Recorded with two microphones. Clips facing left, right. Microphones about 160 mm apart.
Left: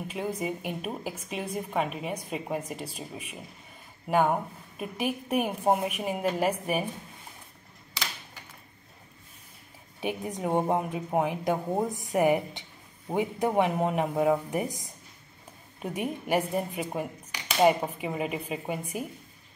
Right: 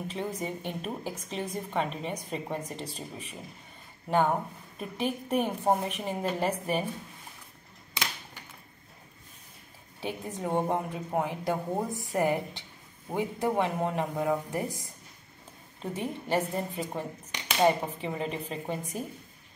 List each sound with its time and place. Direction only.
0.1 s a woman's voice: 10° left (ahead or behind)
9.9 s a woman's voice: 15° left (ahead or behind)